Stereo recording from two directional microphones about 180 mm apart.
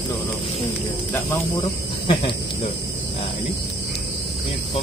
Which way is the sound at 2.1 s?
30° left (ahead or behind).